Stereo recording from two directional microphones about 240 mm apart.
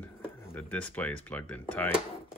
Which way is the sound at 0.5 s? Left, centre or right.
Centre.